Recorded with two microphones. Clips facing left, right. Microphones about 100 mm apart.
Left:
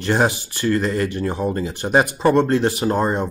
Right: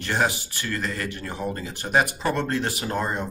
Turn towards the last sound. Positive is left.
turn(degrees=30)  # may be behind; listen again after turning